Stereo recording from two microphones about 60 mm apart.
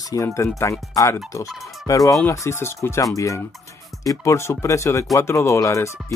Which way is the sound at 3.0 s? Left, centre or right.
Left.